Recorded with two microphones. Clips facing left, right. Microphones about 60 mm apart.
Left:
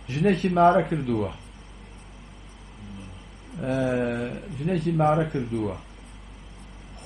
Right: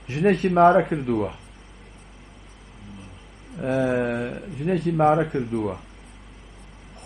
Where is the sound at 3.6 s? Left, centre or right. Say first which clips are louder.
Right 2 dB; centre.